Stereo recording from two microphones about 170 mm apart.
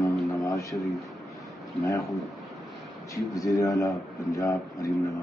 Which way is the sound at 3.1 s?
20° left (ahead or behind).